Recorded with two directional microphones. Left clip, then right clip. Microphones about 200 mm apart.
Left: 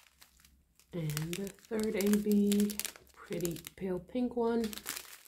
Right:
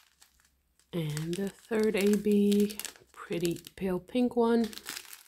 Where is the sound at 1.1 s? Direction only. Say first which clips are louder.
Right 4 dB; 10° left (ahead or behind).